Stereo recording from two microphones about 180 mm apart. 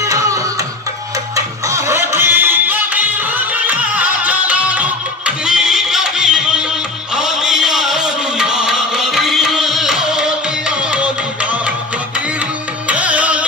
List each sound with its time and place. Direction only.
0.1 s music: 20° right (ahead or behind)
12.8 s music: 5° right (ahead or behind)